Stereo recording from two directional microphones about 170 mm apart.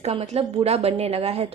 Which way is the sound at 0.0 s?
40° right (ahead or behind).